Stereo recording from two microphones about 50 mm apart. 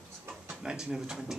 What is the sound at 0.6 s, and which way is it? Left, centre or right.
Speech, centre.